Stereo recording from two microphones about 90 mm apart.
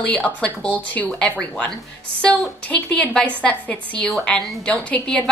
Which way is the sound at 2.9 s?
15° left (ahead or behind).